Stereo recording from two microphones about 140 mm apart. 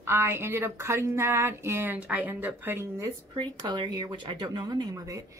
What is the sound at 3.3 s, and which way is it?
Speech, 30° right (ahead or behind).